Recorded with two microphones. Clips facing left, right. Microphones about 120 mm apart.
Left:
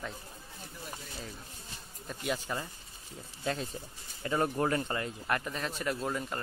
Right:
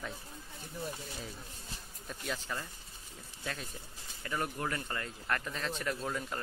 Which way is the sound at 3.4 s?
25° left (ahead or behind).